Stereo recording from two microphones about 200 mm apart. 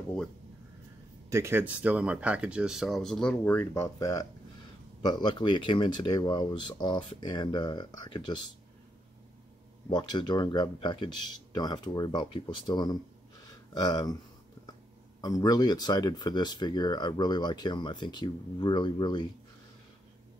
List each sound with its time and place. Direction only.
1.3 s speech: 10° right (ahead or behind); by 8.4 s 20° left (ahead or behind)
9.8 s speech: 20° left (ahead or behind)
15.2 s speech: 20° left (ahead or behind)